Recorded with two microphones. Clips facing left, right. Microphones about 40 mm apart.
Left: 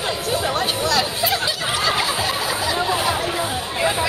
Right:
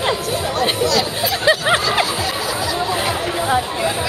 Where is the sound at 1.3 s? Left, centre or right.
Right.